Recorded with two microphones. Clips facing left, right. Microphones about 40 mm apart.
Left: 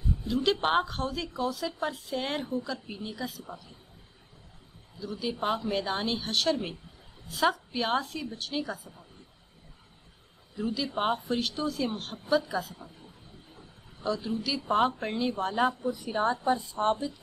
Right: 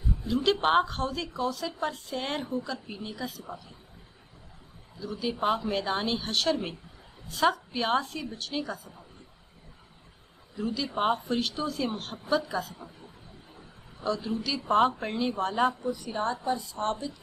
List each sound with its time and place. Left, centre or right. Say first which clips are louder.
0.3 s a woman's voice: right 2 dB; centre
5.0 s a woman's voice: right 2 dB; centre
10.5 s a woman's voice: even; centre
14.0 s a woman's voice: right 1 dB; centre